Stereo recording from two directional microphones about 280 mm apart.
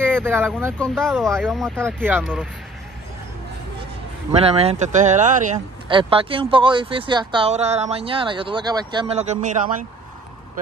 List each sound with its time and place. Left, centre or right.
0.2 s a sound: centre
0.7 s speech: centre
4.3 s speech: right